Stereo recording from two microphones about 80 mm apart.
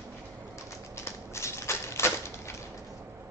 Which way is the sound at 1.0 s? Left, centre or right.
Left.